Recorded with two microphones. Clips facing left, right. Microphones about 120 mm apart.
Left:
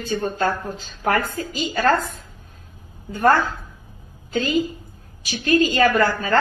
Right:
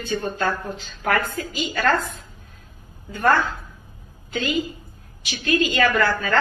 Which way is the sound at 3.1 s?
40° left (ahead or behind).